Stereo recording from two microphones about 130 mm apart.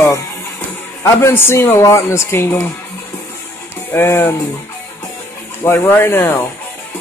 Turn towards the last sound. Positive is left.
turn(degrees=20)  # may be behind; listen again after turning